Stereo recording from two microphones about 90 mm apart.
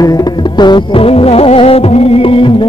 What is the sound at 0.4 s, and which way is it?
Music, 60° left (ahead or behind).